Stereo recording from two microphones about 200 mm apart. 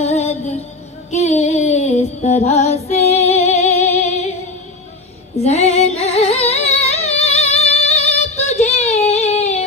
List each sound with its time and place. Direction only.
0.0 s music: 35° left (ahead or behind)
1.1 s female singing: 35° left (ahead or behind)
5.4 s singing: 30° left (ahead or behind)